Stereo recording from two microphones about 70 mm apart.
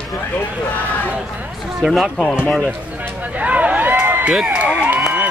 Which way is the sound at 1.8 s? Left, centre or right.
Centre.